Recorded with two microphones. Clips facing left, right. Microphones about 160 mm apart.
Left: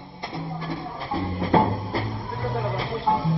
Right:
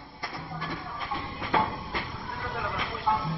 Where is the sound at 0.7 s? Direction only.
35° left (ahead or behind).